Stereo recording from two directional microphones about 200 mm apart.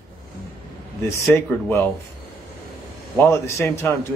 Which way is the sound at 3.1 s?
15° left (ahead or behind).